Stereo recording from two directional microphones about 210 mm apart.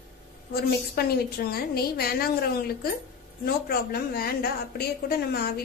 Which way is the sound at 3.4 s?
45° left (ahead or behind).